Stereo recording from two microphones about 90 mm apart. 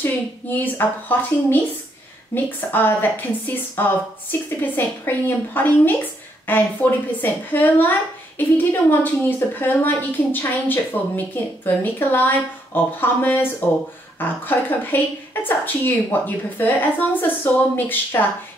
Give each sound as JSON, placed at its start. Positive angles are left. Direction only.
{"t": 0.0, "sound": "a woman's voice", "side_deg": 25}